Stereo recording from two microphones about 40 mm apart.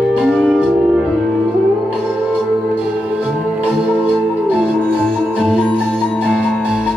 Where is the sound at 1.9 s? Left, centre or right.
Right.